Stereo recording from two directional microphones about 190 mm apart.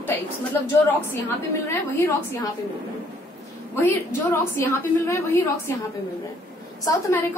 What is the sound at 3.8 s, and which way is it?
A woman's voice, 10° left (ahead or behind).